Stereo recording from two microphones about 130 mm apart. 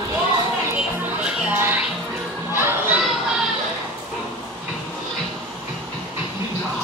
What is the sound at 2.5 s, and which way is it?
Children playing, 15° right (ahead or behind).